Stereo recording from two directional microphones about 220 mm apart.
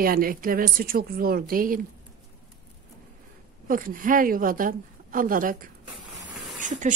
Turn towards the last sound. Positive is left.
turn(degrees=-35)  # may be behind; listen again after turning